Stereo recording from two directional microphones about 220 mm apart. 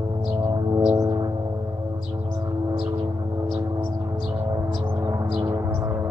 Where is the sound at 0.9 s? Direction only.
15° right (ahead or behind).